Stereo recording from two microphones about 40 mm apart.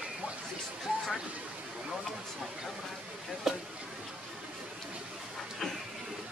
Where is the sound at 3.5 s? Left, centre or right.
Centre.